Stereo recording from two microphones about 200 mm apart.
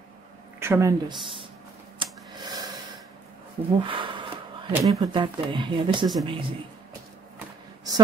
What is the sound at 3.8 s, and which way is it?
Speech, 25° right (ahead or behind).